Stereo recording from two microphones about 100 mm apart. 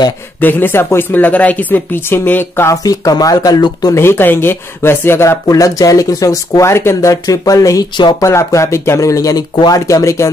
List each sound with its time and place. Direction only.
0.4 s speech: 20° left (ahead or behind)
2.7 s speech: 35° left (ahead or behind)
3.9 s speech: 25° left (ahead or behind)